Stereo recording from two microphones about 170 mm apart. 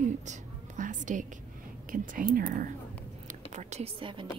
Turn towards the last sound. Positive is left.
turn(degrees=-40)  # may be behind; listen again after turning